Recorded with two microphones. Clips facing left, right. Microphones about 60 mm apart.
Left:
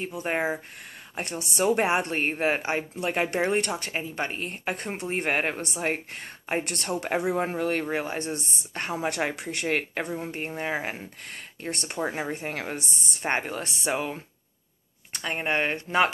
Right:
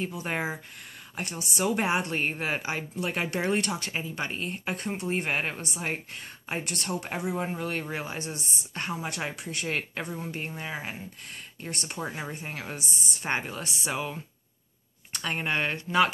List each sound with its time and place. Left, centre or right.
0.0 s speech: left
1.5 s speech: left
10.0 s speech: left
15.1 s speech: left